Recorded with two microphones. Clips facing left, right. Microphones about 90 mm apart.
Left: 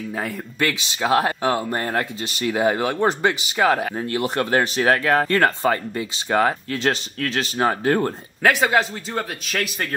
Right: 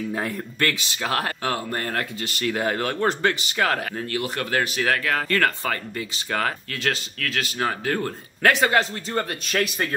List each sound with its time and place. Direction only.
0.6 s speech: 15° left (ahead or behind)
8.4 s a man's voice: 5° left (ahead or behind)